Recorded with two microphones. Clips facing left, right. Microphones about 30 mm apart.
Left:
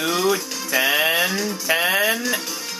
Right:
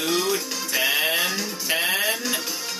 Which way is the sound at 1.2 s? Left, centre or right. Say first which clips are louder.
Left 4 dB; centre.